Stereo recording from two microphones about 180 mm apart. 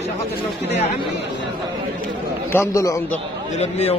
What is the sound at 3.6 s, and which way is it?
Speech, 35° left (ahead or behind).